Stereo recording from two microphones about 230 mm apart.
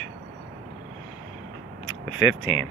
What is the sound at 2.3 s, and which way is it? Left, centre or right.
Speech, left.